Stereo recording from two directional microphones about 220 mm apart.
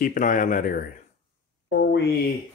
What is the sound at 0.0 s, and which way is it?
Speech, 35° left (ahead or behind).